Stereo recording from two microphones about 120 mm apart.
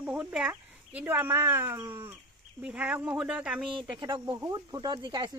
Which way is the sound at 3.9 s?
40° right (ahead or behind).